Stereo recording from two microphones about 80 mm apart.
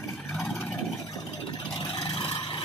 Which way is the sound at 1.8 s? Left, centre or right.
Left.